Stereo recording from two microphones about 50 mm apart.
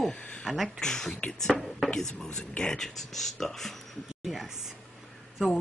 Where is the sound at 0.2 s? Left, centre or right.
Left.